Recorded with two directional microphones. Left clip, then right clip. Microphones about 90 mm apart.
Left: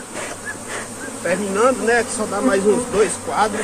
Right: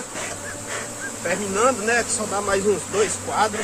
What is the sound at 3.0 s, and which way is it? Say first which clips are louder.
Speech: left 3 dB; 15° right (ahead or behind).